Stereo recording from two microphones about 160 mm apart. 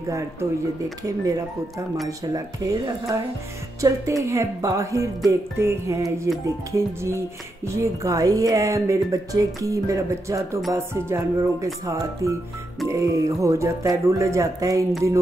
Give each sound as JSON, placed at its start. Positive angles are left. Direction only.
{"t": 0.0, "sound": "speech", "side_deg": -20}
{"t": 2.0, "sound": "speech", "side_deg": -20}